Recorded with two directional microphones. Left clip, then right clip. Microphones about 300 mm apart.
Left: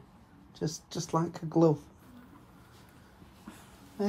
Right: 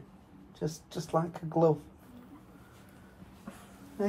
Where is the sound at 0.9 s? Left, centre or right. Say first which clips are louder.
Right 1 dB; left.